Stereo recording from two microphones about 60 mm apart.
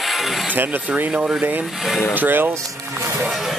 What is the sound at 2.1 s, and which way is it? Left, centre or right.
Speech, right.